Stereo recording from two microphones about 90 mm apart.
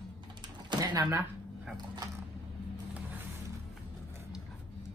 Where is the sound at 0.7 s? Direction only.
50° right (ahead or behind).